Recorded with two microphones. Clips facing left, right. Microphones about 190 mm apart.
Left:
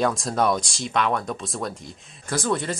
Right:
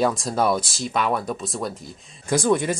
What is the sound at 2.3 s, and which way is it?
Speech, 10° right (ahead or behind).